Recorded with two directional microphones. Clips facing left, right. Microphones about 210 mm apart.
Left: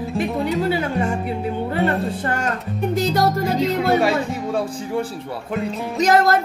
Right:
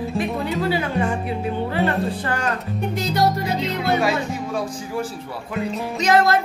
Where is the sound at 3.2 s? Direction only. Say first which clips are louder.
Right 1 dB; 45° left (ahead or behind).